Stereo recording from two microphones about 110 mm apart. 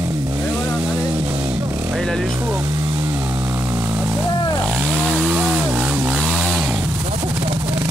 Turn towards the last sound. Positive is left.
turn(degrees=-15)  # may be behind; listen again after turning